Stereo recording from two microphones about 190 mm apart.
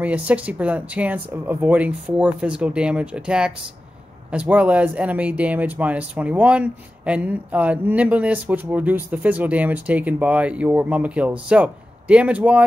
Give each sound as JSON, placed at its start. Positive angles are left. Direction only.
{"t": 0.0, "sound": "speech", "side_deg": -10}